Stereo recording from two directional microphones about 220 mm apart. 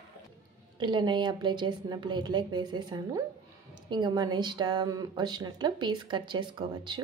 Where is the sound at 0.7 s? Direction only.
20° right (ahead or behind).